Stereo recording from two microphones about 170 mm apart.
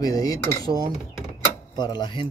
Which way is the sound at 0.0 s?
20° left (ahead or behind).